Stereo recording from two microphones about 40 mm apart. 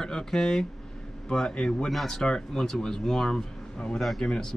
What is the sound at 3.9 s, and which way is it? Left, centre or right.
Speech, centre.